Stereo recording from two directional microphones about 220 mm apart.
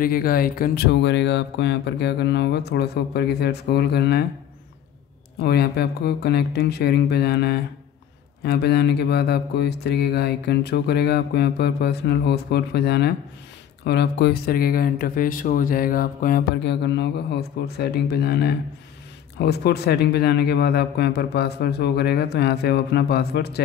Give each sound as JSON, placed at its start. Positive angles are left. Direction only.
{"t": 0.0, "sound": "speech", "side_deg": 40}
{"t": 5.4, "sound": "speech", "side_deg": 45}